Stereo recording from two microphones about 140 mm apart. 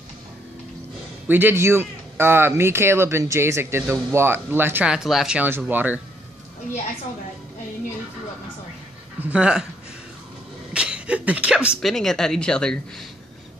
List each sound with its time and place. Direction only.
1.2 s speech: 15° right (ahead or behind)
9.2 s speech: 10° right (ahead or behind)
10.7 s speech: 10° right (ahead or behind)